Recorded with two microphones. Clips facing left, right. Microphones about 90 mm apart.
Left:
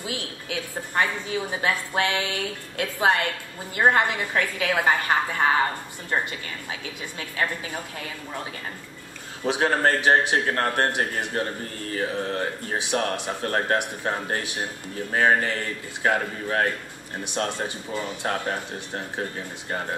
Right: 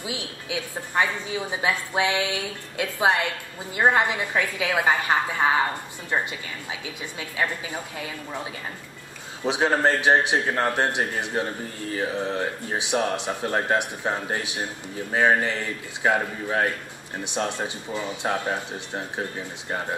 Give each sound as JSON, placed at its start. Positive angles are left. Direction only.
{"t": 0.0, "sound": "a woman's voice", "side_deg": -15}
{"t": 6.7, "sound": "a woman's voice", "side_deg": -10}
{"t": 9.4, "sound": "a woman's voice", "side_deg": -15}
{"t": 17.9, "sound": "a woman's voice", "side_deg": -15}